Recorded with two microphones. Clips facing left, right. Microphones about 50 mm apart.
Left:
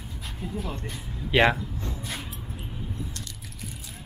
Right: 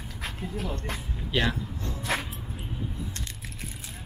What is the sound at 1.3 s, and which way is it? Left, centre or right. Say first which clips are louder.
Speech: left 7 dB; left.